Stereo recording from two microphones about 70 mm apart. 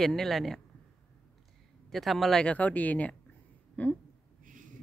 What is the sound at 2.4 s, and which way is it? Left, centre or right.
Speech, centre.